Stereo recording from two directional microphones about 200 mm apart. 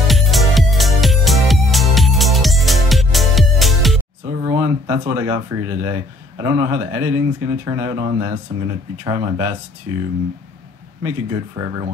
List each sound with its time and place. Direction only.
0.0 s music: centre (ahead or behind)
4.4 s speech: 15° right (ahead or behind)